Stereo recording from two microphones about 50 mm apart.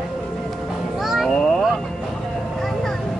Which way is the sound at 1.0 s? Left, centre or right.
Centre.